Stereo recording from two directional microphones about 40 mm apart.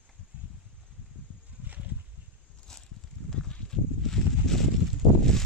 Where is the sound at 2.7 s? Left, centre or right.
Centre.